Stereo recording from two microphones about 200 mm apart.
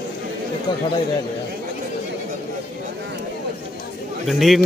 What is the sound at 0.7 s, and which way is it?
Speech, 20° left (ahead or behind).